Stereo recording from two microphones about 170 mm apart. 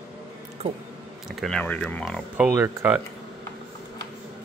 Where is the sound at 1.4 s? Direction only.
5° left (ahead or behind).